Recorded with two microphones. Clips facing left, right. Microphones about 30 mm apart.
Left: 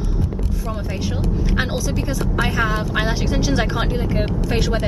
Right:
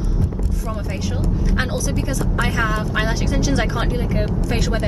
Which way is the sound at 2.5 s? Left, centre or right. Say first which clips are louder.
Even; centre.